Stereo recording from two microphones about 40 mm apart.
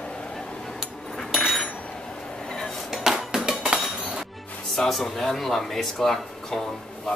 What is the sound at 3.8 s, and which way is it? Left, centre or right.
Dishes, centre.